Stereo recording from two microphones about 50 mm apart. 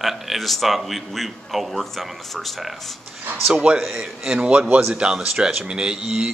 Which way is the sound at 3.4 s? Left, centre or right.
Centre.